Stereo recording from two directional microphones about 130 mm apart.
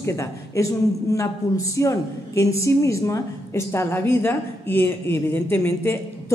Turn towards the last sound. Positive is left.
turn(degrees=20)  # may be behind; listen again after turning